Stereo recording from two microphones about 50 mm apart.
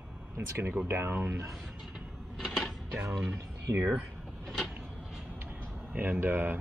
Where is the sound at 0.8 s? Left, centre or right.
Right.